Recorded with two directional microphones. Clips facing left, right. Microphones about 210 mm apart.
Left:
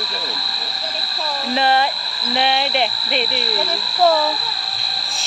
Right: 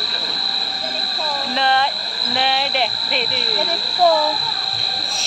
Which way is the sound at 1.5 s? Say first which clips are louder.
Left 2 dB; 5° left (ahead or behind).